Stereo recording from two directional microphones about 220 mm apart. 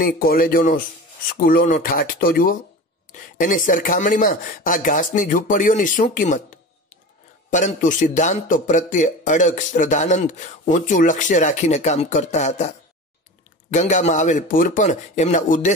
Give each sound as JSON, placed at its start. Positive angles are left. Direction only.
{"t": 0.0, "sound": "a man's voice", "side_deg": 40}
{"t": 13.7, "sound": "a man's voice", "side_deg": 35}